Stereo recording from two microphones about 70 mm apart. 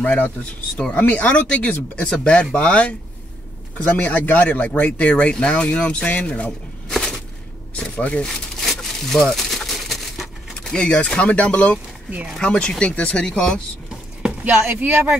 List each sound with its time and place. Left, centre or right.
0.0 s speech: centre
7.7 s speech: centre
8.6 s crumpling: centre
12.4 s speech: centre
14.2 s speech: centre